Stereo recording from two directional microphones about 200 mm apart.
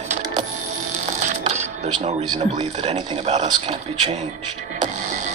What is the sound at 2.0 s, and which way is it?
Speech, 35° right (ahead or behind).